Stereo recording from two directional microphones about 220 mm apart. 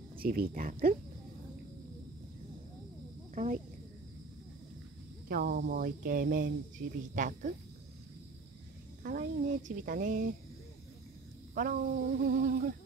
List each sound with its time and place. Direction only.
0.2 s speech: 40° right (ahead or behind)
3.4 s speech: 40° right (ahead or behind)
5.3 s speech: 45° right (ahead or behind)
9.0 s speech: 35° right (ahead or behind)
11.5 s speech: 40° right (ahead or behind)